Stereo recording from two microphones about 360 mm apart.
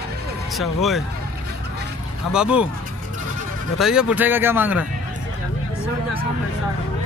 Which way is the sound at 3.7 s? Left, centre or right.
Centre.